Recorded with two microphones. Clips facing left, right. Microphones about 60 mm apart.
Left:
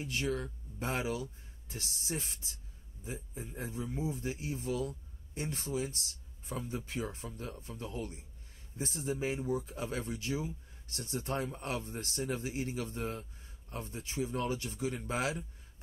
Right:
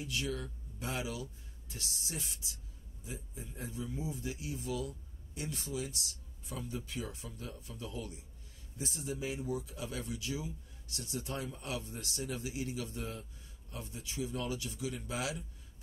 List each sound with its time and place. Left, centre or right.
0.0 s speech: left